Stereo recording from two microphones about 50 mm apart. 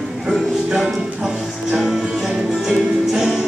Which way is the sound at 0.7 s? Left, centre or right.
Centre.